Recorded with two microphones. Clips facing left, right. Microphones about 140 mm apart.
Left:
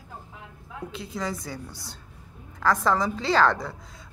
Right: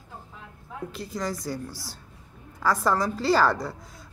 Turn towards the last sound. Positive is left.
turn(degrees=-5)  # may be behind; listen again after turning